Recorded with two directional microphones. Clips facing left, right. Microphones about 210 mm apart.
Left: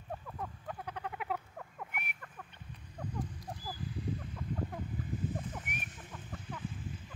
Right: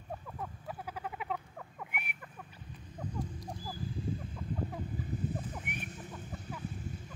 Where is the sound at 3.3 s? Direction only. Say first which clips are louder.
Right 1 dB; centre (ahead or behind).